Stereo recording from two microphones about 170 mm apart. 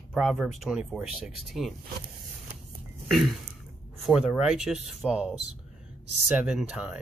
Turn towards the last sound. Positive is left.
turn(degrees=-5)  # may be behind; listen again after turning